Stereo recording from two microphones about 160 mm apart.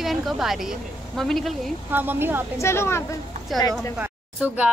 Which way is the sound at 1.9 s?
10° right (ahead or behind).